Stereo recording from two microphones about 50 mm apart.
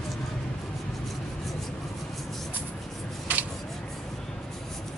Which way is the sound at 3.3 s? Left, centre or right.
Right.